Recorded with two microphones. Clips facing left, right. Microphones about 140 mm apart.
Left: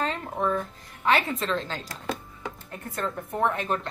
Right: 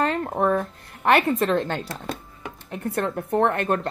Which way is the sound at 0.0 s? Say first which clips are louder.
Right 6 dB; 55° right (ahead or behind).